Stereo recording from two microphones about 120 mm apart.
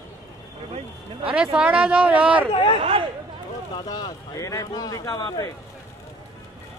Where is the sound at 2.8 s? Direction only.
50° right (ahead or behind).